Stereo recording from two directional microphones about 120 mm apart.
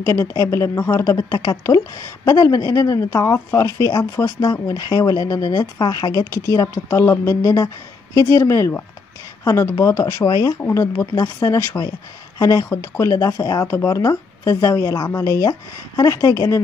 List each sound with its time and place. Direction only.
0.0 s speech: 25° left (ahead or behind)
10.6 s speech: 20° left (ahead or behind)